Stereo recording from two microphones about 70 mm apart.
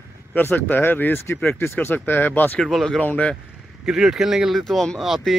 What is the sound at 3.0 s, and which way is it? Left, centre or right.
Speech, centre.